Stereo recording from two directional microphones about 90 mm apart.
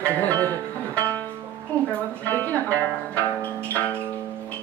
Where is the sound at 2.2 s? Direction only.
20° left (ahead or behind).